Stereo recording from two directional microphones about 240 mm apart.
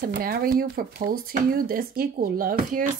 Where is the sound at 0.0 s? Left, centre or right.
Right.